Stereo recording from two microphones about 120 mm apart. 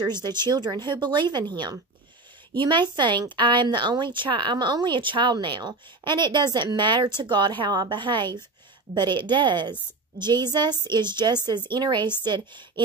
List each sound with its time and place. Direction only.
0.0 s a woman's voice: 40° right (ahead or behind)